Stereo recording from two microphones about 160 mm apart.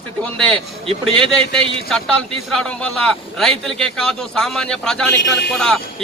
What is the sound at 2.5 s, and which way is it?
A man's voice, 5° left (ahead or behind).